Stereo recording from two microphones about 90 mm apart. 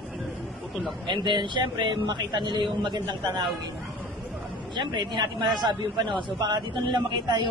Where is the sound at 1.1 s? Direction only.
60° right (ahead or behind).